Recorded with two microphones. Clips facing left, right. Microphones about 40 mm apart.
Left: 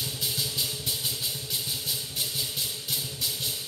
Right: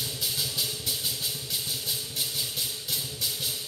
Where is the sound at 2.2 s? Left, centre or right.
Centre.